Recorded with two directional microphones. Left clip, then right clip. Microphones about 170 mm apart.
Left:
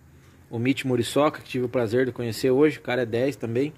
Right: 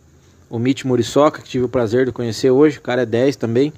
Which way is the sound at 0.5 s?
20° right (ahead or behind).